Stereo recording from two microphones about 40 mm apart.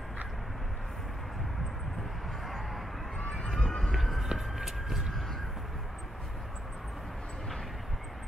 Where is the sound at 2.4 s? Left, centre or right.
Centre.